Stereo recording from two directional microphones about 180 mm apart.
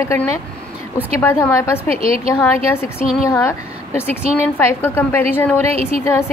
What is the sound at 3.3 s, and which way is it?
A woman's voice, 15° left (ahead or behind).